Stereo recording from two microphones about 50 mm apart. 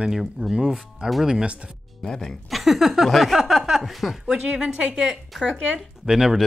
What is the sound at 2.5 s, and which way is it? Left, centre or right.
Speech, centre.